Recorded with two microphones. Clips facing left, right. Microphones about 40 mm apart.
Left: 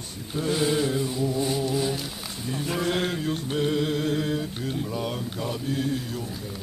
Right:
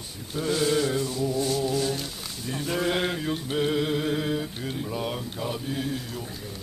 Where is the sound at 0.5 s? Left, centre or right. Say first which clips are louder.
Even; centre.